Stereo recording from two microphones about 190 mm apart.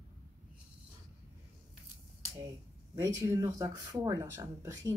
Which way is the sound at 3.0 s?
15° right (ahead or behind).